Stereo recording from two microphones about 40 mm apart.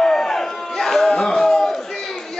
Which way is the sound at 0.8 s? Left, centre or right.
Centre.